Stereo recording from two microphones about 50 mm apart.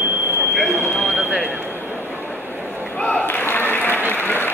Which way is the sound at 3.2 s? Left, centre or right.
Left.